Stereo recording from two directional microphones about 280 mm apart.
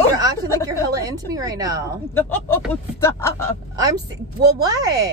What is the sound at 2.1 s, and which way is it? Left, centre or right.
Speech, centre.